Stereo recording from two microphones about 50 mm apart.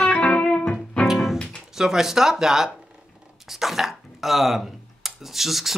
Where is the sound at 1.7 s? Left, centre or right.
Centre.